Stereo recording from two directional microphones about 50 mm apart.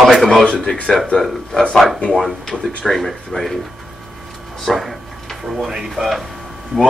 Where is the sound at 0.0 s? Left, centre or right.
Centre.